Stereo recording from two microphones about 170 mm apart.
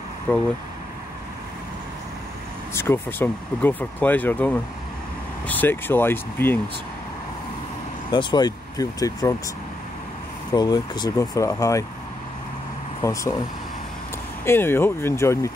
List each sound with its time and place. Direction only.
0.3 s speech: 10° left (ahead or behind)
2.7 s speech: 15° left (ahead or behind)
8.1 s speech: 25° left (ahead or behind)
10.5 s speech: 25° left (ahead or behind)
13.0 s speech: 20° left (ahead or behind)
14.4 s speech: 15° left (ahead or behind)